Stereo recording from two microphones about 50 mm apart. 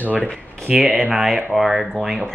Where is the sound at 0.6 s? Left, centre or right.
Right.